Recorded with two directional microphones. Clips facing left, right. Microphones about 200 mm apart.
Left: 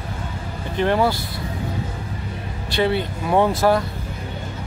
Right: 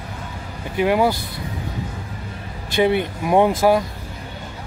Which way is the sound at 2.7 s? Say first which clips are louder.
Right 3 dB; 15° right (ahead or behind).